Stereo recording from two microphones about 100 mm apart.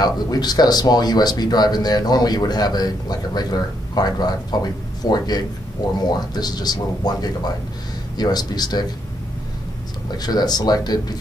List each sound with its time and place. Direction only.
0.0 s speech: 40° left (ahead or behind)
10.1 s speech: 40° left (ahead or behind)